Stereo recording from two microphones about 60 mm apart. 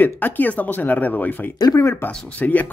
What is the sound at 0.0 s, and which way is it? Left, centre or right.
Speech, left.